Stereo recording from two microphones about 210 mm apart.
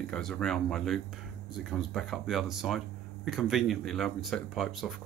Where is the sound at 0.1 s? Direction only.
5° left (ahead or behind).